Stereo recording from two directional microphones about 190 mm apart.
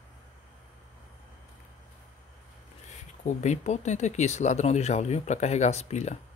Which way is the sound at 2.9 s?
40° left (ahead or behind).